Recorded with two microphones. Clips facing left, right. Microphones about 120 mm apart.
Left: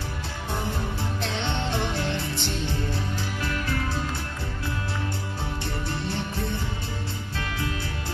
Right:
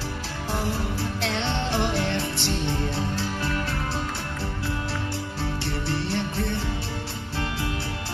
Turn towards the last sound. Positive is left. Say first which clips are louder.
# right 3 dB
turn(degrees=-65)  # may be behind; listen again after turning